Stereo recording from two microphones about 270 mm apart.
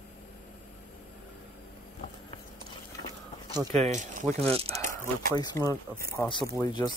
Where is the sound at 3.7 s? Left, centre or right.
Right.